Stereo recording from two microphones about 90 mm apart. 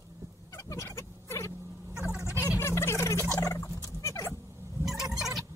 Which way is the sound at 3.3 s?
35° left (ahead or behind).